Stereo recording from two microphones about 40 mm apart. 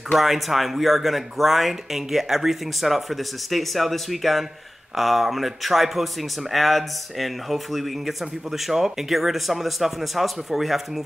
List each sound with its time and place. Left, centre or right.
0.2 s a man's voice: centre